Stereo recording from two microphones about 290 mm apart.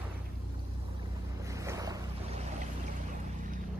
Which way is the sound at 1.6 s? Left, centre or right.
Centre.